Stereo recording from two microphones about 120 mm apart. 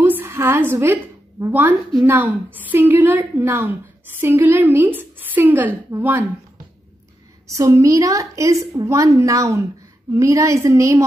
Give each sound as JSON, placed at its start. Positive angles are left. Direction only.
{"t": 0.0, "sound": "a sound", "side_deg": -20}
{"t": 1.4, "sound": "a woman's voice", "side_deg": -20}
{"t": 7.5, "sound": "a woman's voice", "side_deg": -25}